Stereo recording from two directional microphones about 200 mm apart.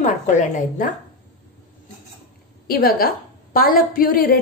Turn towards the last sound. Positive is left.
turn(degrees=45)  # may be behind; listen again after turning